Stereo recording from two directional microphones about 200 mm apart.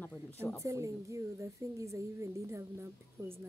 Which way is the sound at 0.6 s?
15° right (ahead or behind).